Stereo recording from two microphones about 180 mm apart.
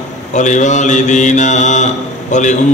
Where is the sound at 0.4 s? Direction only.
40° left (ahead or behind).